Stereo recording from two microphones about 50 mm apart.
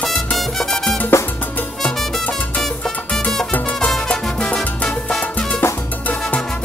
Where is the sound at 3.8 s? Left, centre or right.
Centre.